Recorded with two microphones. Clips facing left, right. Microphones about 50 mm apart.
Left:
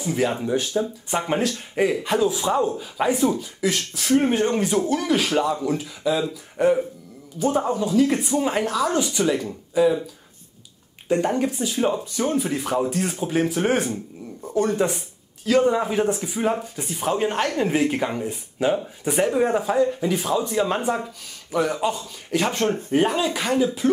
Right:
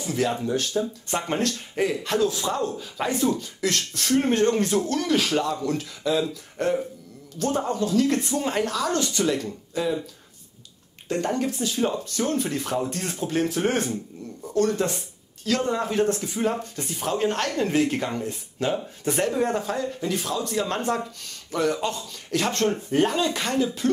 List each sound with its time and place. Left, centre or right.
0.0 s speech: centre
11.1 s speech: centre